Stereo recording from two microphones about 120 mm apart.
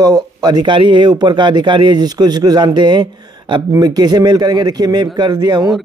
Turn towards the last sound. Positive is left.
turn(degrees=-35)  # may be behind; listen again after turning